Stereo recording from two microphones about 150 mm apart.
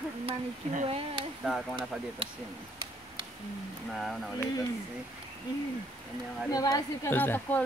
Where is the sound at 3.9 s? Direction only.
Centre (ahead or behind).